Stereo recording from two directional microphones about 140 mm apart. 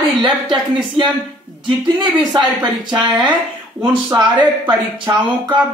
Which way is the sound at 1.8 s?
35° right (ahead or behind).